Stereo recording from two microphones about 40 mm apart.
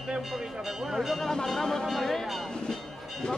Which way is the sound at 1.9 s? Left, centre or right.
Centre.